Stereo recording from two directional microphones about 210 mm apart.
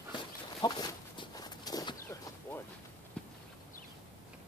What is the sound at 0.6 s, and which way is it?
Chicken, 20° left (ahead or behind).